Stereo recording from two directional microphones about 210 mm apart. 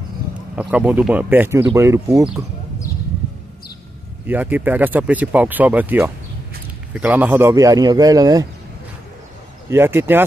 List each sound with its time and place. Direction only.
0.6 s speech: 5° right (ahead or behind)
4.3 s speech: 10° right (ahead or behind)
9.7 s speech: 10° right (ahead or behind)